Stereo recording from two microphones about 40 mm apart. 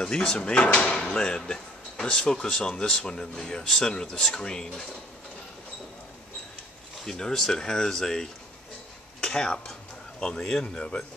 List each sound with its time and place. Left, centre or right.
0.0 s speech: centre
7.1 s speech: centre
9.2 s a sound: centre
10.2 s speech: centre